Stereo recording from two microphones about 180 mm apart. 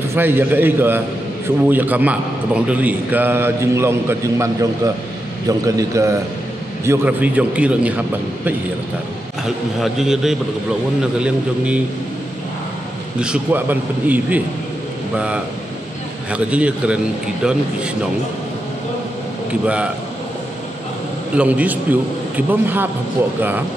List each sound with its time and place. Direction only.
0.1 s a man's voice: 10° right (ahead or behind)
9.8 s a man's voice: centre (ahead or behind)
13.2 s a man's voice: 5° right (ahead or behind)
19.6 s a man's voice: 5° right (ahead or behind)
21.4 s a man's voice: 10° right (ahead or behind)